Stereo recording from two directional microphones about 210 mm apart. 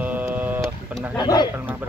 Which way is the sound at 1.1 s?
20° left (ahead or behind).